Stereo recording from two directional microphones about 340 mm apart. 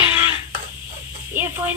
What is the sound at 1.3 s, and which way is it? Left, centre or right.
Speech, centre.